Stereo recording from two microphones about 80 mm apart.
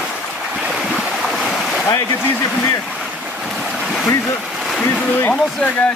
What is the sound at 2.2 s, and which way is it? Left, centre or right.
Speech, left.